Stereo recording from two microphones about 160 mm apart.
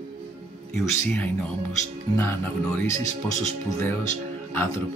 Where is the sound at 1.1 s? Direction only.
10° left (ahead or behind).